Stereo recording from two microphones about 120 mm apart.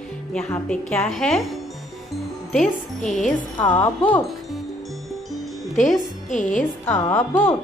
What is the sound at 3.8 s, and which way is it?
Speech, 15° left (ahead or behind).